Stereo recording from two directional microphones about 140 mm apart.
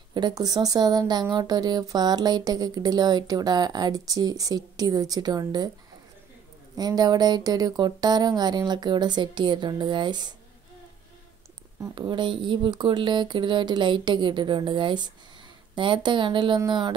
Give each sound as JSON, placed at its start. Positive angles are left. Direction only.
{"t": 0.1, "sound": "speech", "side_deg": -30}
{"t": 6.8, "sound": "speech", "side_deg": -30}
{"t": 11.9, "sound": "speech", "side_deg": -35}